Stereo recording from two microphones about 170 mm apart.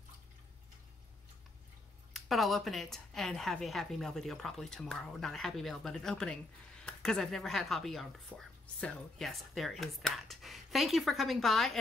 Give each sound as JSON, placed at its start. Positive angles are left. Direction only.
{"t": 2.1, "sound": "speech", "side_deg": 0}